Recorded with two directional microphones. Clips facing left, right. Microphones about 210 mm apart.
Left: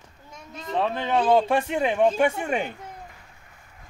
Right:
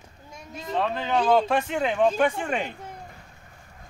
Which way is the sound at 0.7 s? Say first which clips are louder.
Left 1 dB; 5° left (ahead or behind).